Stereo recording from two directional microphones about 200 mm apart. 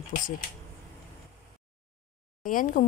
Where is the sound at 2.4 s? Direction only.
45° left (ahead or behind).